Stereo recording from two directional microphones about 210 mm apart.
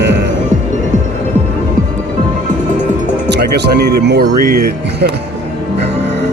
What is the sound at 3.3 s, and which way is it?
Speech, 50° right (ahead or behind).